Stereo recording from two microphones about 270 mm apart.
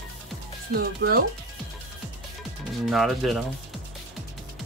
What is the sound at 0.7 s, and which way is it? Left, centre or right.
Speech, right.